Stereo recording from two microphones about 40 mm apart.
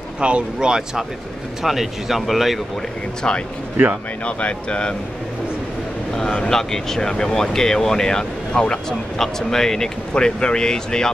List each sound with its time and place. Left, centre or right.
0.2 s speech: right
1.6 s speech: centre
3.2 s speech: left
6.5 s speech: centre
10.1 s speech: left